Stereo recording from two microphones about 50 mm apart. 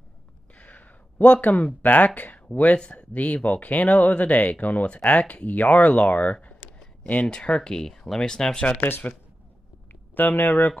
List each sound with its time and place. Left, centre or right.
0.6 s speech: left
2.8 s speech: centre
10.1 s speech: left